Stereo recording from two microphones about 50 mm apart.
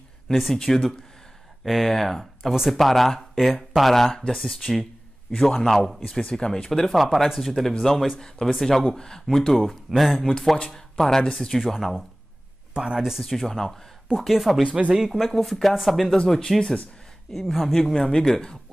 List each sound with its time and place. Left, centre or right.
0.3 s speech: centre
6.7 s speech: centre
9.6 s speech: centre
11.6 s speech: centre
12.7 s speech: centre
13.5 s speech: centre
14.2 s speech: centre
14.6 s speech: right
15.0 s speech: centre
16.3 s speech: centre